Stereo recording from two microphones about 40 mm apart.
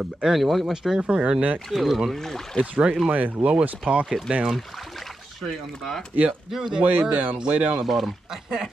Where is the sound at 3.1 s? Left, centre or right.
Right.